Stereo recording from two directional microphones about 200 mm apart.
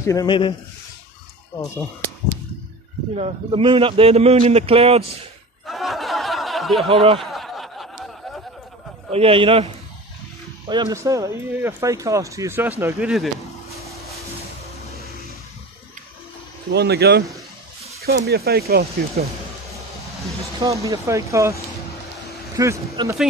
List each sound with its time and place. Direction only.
0.0 s speech: 15° left (ahead or behind)
3.2 s a man's voice: 25° right (ahead or behind)
5.7 s a sound: centre (ahead or behind)
6.9 s a man's voice: 25° right (ahead or behind)
7.2 s a sound: centre (ahead or behind)
9.1 s a man's voice: 30° right (ahead or behind)
10.7 s speech: 20° right (ahead or behind); by 13.3 s 5° right (ahead or behind)
16.7 s speech: 55° right (ahead or behind)
20.1 s a sound: centre (ahead or behind)
20.6 s speech: 15° right (ahead or behind)
22.6 s speech: 15° right (ahead or behind)